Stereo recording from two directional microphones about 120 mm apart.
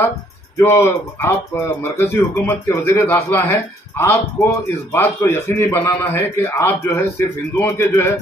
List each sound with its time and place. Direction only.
0.6 s speech: 20° left (ahead or behind)